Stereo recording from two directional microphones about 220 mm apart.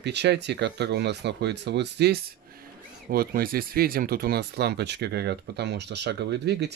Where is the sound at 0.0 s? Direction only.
50° right (ahead or behind).